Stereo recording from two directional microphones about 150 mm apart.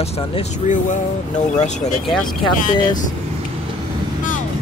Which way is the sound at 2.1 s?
Centre (ahead or behind).